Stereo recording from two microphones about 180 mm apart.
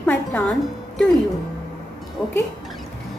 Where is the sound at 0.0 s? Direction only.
5° left (ahead or behind).